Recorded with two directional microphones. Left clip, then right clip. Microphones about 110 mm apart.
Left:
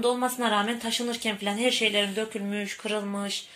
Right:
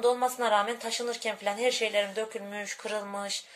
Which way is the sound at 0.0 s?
40° right (ahead or behind).